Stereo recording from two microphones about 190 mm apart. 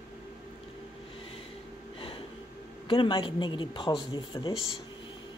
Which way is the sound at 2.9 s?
25° left (ahead or behind).